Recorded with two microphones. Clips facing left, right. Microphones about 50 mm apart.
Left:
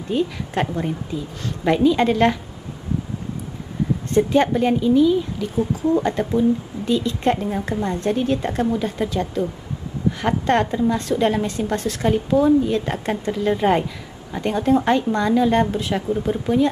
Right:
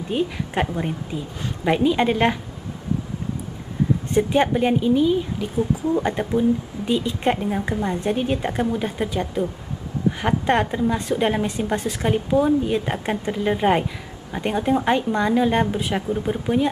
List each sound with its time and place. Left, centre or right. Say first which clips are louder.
0.1 s a woman's voice: left 2 dB; centre
4.1 s a woman's voice: left 3 dB; centre